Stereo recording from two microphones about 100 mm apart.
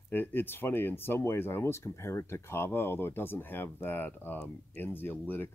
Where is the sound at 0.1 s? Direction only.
20° left (ahead or behind).